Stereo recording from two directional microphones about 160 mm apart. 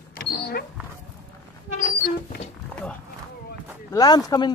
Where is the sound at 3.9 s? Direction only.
25° left (ahead or behind).